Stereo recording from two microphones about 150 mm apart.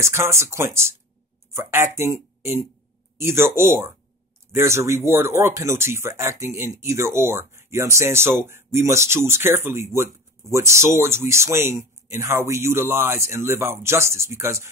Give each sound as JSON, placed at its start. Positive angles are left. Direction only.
{"t": 0.0, "sound": "speech", "side_deg": -20}